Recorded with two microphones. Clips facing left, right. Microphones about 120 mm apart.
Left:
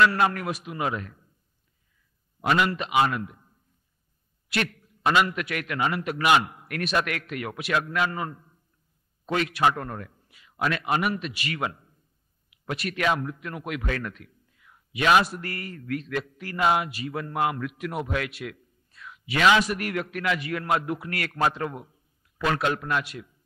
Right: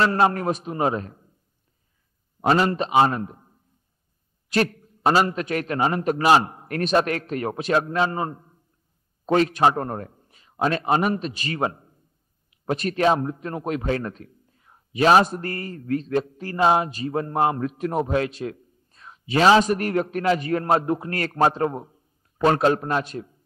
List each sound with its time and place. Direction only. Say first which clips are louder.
0.0 s a man's voice: right 2 dB; 35° right (ahead or behind)
2.4 s a man's voice: right 4 dB; 35° right (ahead or behind)